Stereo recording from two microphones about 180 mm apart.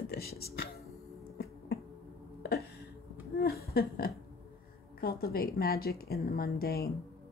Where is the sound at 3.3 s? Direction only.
60° left (ahead or behind).